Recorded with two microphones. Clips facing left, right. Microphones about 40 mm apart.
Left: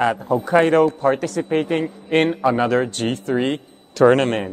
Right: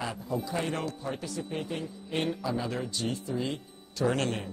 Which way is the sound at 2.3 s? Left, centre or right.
Left.